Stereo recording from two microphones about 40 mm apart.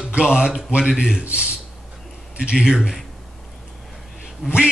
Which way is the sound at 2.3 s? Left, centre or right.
Right.